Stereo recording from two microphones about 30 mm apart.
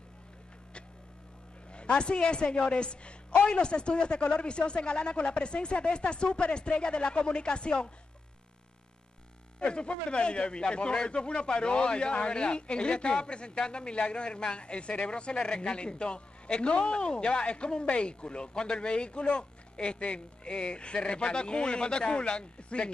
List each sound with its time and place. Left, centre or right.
1.7 s a man's voice: left
9.6 s a man's voice: left